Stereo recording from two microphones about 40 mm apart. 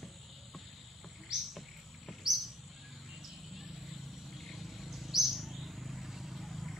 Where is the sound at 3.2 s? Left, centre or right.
Centre.